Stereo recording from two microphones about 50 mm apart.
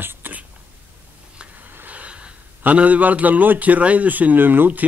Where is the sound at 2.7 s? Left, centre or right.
Right.